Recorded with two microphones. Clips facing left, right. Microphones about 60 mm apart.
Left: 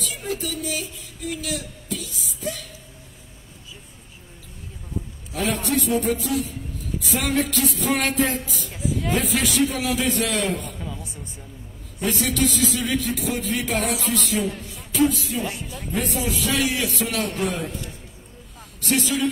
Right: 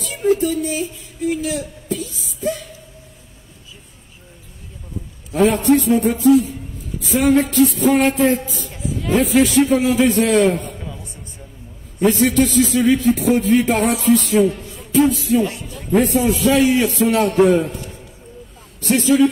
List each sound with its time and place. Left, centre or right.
0.0 s speech: right
5.4 s a man's voice: right
12.0 s a man's voice: right
14.6 s music: right
15.9 s a man's voice: right
18.8 s a man's voice: right